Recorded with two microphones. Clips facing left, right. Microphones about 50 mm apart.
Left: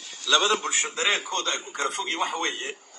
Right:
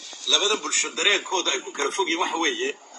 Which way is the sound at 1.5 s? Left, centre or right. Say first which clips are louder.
Right 2 dB; right.